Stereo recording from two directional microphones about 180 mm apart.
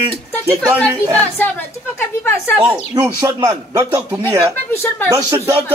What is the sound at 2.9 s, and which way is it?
Speech, 15° right (ahead or behind).